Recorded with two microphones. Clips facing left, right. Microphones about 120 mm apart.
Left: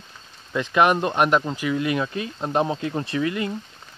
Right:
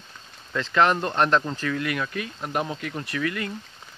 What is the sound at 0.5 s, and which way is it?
Speech, 15° left (ahead or behind).